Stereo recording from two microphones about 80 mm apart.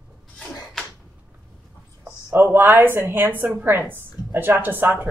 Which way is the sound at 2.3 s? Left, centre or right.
Right.